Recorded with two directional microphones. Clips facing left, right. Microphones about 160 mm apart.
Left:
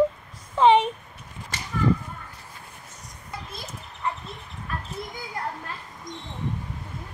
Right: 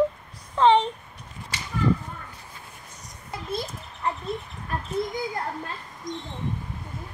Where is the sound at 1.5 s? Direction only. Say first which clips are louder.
Even; 50° left (ahead or behind).